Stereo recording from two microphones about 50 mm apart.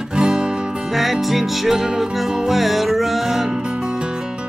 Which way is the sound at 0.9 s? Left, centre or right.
Centre.